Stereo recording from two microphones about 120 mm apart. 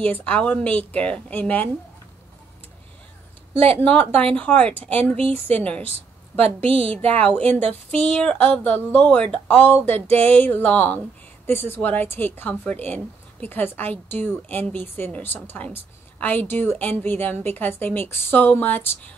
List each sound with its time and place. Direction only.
0.0 s a woman's voice: 10° left (ahead or behind)
3.5 s speech: 55° right (ahead or behind)
4.3 s a woman's voice: 10° left (ahead or behind)
5.2 s a woman's voice: 55° right (ahead or behind)
5.6 s a woman's voice: 10° left (ahead or behind)
6.9 s speech: 55° right (ahead or behind)
7.2 s a woman's voice: 10° left (ahead or behind)